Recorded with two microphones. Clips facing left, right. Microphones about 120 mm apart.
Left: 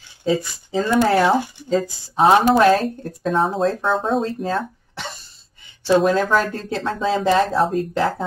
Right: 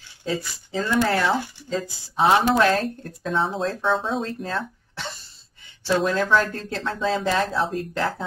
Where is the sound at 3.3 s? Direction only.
45° left (ahead or behind).